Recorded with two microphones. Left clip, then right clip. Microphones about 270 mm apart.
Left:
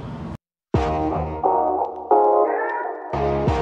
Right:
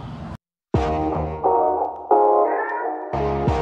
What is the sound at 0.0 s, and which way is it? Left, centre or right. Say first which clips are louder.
Music: left 2 dB; centre.